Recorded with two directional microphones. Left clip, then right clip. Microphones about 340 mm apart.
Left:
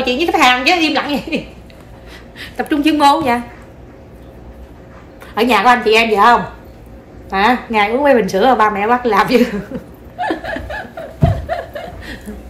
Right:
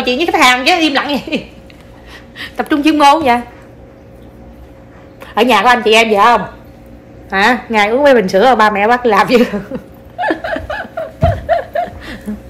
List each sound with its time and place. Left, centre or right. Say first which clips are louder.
0.0 s a woman's voice: right 2 dB; centre
5.2 s a woman's voice: right 2 dB; centre
7.2 s a sound: right 2 dB; centre